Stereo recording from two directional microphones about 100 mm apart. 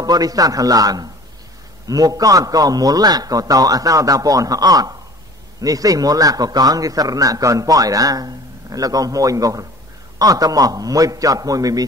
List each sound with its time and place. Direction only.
0.0 s a man's voice: 40° right (ahead or behind)